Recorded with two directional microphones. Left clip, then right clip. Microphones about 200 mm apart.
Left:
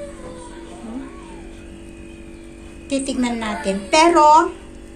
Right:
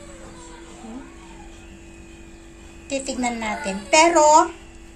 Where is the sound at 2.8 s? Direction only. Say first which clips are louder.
Left 3 dB; 10° right (ahead or behind).